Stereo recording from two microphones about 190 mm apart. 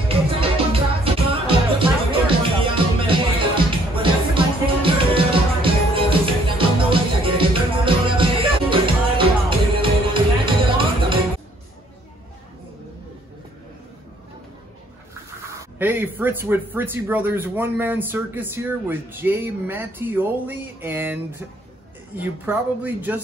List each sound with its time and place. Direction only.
0.1 s music: 30° right (ahead or behind)
15.8 s speech: 10° right (ahead or behind)